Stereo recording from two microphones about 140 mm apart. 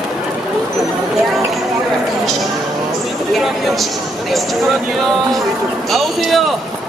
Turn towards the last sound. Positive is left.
turn(degrees=0)  # may be behind; listen again after turning